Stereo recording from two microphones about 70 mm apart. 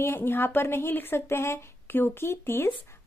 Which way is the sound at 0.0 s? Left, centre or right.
Left.